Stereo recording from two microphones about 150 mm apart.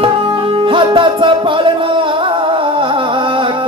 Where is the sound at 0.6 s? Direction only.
35° right (ahead or behind).